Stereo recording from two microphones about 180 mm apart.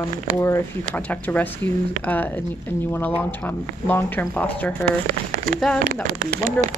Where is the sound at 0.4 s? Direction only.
10° left (ahead or behind).